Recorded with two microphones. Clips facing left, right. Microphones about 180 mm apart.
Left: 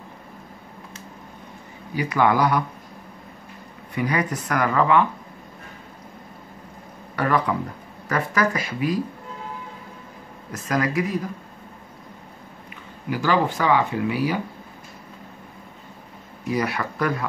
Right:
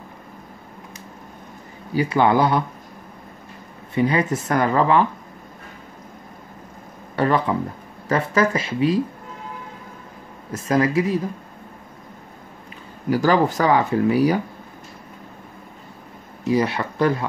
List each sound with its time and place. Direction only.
2.0 s speech: 30° right (ahead or behind)
3.9 s speech: 25° right (ahead or behind)
7.2 s speech: 25° right (ahead or behind)
10.5 s speech: 25° right (ahead or behind)
13.1 s speech: 40° right (ahead or behind)
16.4 s speech: 25° right (ahead or behind)